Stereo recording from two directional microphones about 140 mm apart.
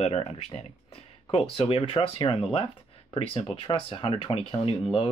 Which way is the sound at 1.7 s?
40° left (ahead or behind).